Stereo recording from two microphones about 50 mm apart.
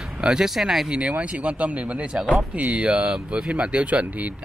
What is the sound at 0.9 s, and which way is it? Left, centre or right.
Speech, right.